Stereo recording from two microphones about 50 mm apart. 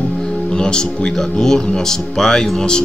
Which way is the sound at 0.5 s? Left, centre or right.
Centre.